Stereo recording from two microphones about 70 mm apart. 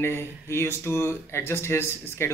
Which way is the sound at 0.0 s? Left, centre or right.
Left.